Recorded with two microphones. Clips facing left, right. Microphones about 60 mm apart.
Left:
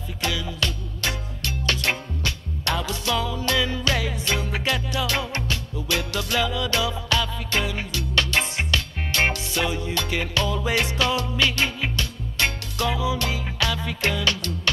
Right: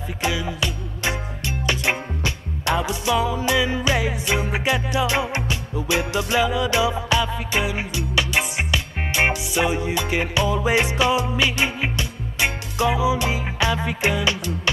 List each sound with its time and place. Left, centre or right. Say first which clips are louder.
0.2 s music: right 2 dB; right